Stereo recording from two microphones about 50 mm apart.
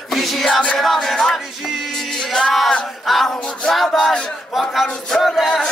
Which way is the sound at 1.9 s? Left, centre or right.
Centre.